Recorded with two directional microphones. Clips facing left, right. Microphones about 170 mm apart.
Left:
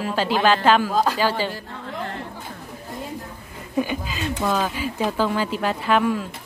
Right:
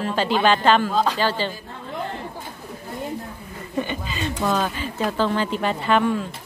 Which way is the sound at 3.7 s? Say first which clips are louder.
Left 2 dB; 5° left (ahead or behind).